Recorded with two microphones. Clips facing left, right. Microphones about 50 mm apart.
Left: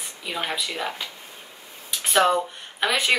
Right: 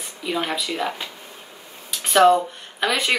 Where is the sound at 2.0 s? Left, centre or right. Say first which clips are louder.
Right 5 dB; centre.